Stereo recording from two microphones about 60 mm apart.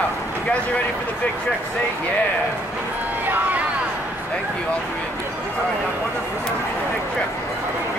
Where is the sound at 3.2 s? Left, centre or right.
Right.